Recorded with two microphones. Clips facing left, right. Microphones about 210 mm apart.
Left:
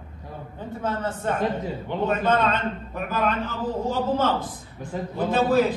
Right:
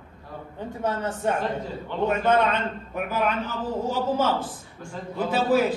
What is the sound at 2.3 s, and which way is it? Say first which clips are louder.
A man's voice: right 1 dB; 10° right (ahead or behind).